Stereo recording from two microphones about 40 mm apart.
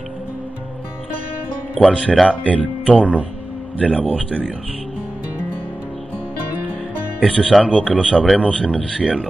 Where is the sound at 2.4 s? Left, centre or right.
Left.